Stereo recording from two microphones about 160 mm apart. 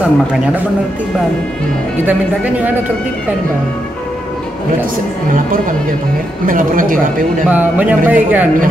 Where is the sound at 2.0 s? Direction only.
10° right (ahead or behind).